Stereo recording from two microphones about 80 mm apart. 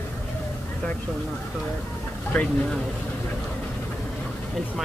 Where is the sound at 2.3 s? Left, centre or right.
Centre.